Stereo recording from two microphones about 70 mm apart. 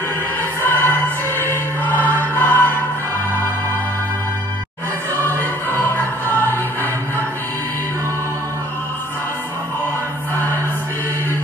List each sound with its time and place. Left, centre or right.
0.7 s music: left
5.2 s music: left